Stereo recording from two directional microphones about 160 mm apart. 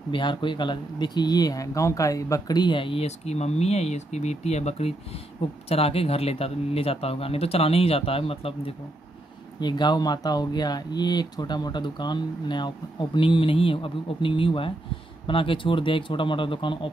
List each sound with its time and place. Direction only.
0.1 s speech: 30° left (ahead or behind)